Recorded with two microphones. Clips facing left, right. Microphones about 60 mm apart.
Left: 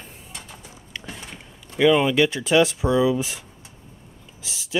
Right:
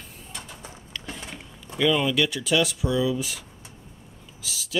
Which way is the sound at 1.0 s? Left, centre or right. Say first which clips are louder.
Right 1 dB; centre.